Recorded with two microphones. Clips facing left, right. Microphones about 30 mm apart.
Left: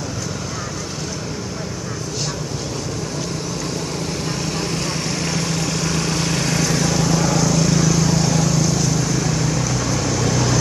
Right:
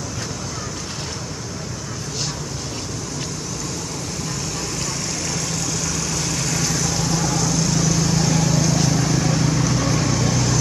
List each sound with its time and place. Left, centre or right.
5.2 s vehicle: left; by 10.5 s centre